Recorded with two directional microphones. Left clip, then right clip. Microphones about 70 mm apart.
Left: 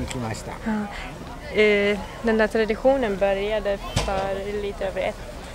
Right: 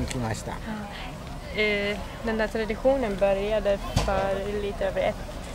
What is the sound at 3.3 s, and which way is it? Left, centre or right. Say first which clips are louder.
Speech: left 1 dB; centre.